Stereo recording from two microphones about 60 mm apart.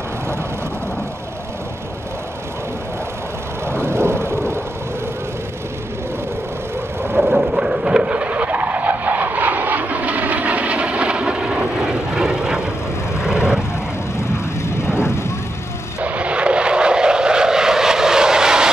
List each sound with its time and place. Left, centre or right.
3.6 s vehicle: right
7.2 s vehicle: centre
15.0 s vehicle: left
16.0 s vehicle: right